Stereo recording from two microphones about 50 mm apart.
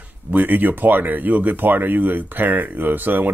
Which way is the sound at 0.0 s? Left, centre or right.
Right.